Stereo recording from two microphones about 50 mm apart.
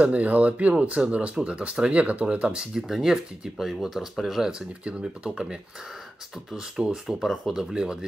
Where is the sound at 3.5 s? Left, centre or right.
Centre.